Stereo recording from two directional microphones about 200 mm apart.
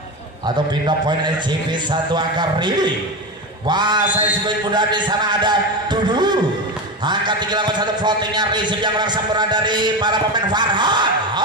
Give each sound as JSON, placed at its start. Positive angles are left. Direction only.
{"t": 1.7, "sound": "a man's voice", "side_deg": -20}